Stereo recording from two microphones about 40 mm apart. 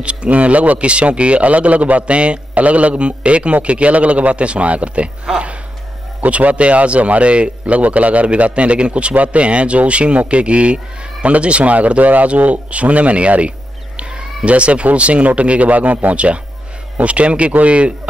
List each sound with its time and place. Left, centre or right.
0.0 s a man's voice: right
6.2 s a man's voice: right
13.9 s a sound: right
15.0 s a man's voice: right